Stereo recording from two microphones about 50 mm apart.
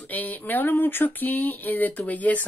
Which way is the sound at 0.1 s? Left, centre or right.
Left.